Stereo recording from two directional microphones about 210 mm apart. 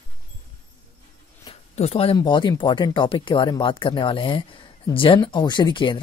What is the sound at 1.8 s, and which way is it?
Speech, 30° left (ahead or behind).